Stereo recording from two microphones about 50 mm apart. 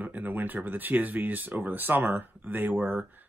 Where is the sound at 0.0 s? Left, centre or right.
Right.